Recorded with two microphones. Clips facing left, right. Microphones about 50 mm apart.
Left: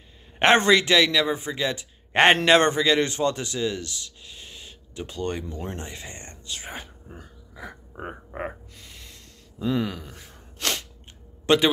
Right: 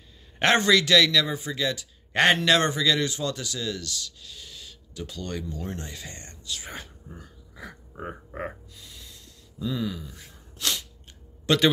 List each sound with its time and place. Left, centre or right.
0.4 s a man's voice: left
7.5 s speech: centre
8.7 s gasp: left
11.5 s a man's voice: left